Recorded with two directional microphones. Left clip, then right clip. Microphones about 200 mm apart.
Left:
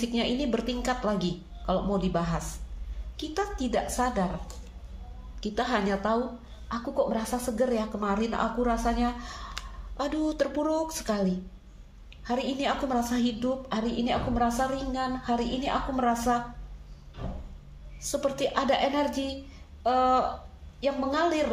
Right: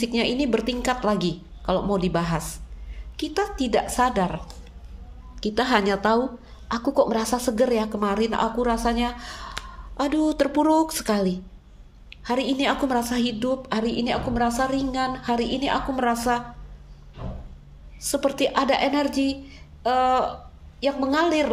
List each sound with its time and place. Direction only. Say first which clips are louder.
0.0 s a woman's voice: right 5 dB; 40° right (ahead or behind)
5.4 s a woman's voice: right 7 dB; 30° right (ahead or behind)
18.0 s a woman's voice: right 5 dB; 40° right (ahead or behind)